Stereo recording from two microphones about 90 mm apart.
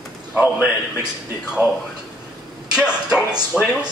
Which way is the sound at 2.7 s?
10° right (ahead or behind).